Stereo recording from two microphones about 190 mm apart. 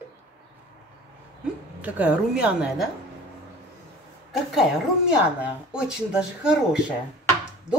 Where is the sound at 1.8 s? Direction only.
10° right (ahead or behind).